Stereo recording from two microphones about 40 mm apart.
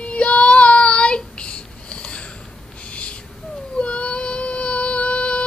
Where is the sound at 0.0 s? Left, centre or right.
Left.